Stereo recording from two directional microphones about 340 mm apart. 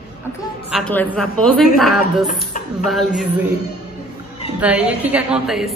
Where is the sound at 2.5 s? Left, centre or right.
Left.